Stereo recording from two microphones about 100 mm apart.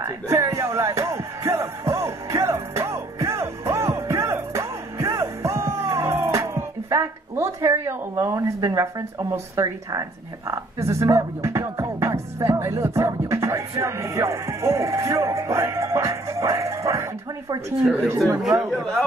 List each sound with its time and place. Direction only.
0.0 s music: 35° right (ahead or behind)
7.8 s a woman's voice: 30° right (ahead or behind)
18.4 s speech: 5° right (ahead or behind)